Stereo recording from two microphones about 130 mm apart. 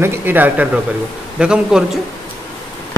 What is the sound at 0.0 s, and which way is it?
Speech, 15° right (ahead or behind).